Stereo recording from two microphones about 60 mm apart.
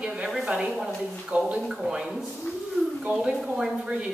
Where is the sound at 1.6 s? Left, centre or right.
Centre.